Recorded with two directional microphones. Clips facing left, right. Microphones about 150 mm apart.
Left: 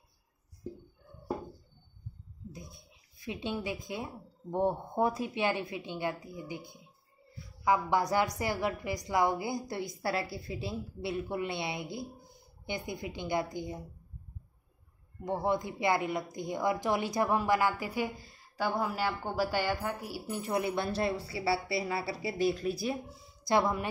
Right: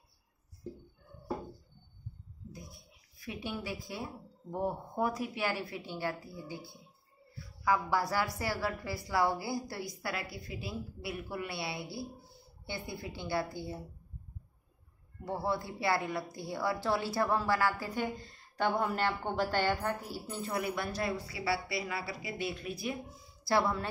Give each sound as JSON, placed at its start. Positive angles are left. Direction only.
{"t": 2.5, "sound": "a woman's voice", "side_deg": 20}
{"t": 15.2, "sound": "a woman's voice", "side_deg": 15}
{"t": 23.4, "sound": "speech", "side_deg": 15}